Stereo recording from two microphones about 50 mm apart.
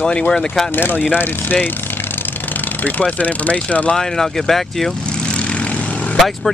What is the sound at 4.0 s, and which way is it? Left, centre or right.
Speech, centre.